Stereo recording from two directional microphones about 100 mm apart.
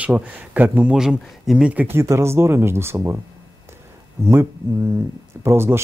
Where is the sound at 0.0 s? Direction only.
15° right (ahead or behind).